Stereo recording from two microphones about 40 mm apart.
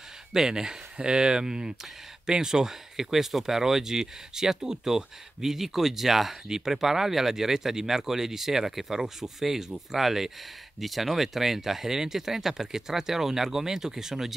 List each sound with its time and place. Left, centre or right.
0.3 s speech: centre